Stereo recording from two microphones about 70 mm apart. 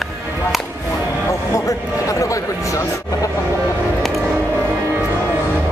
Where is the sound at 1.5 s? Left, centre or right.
Left.